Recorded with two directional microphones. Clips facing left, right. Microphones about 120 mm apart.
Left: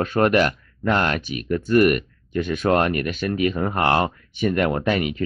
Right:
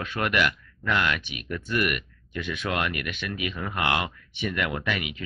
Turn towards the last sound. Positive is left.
turn(degrees=40)  # may be behind; listen again after turning